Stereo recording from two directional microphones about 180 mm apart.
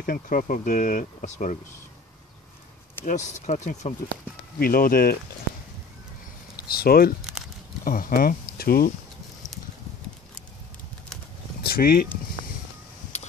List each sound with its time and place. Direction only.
0.0 s speech: 50° left (ahead or behind)
3.1 s speech: 40° left (ahead or behind)
4.6 s speech: 55° left (ahead or behind)
6.5 s speech: 55° left (ahead or behind)
7.2 s a sound: 5° right (ahead or behind)
7.8 s speech: 50° left (ahead or behind)
11.6 s speech: 55° left (ahead or behind)